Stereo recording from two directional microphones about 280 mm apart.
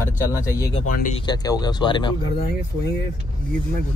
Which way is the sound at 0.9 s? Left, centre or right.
Left.